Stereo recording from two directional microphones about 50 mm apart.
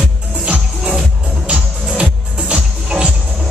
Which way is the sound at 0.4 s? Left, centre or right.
Centre.